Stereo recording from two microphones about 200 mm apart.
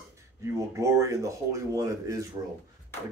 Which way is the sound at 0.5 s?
15° right (ahead or behind).